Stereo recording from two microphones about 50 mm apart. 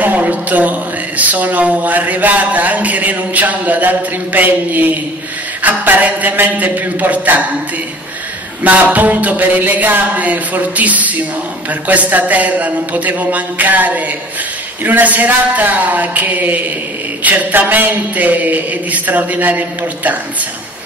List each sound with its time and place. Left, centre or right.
0.0 s speech: right
8.6 s speech: right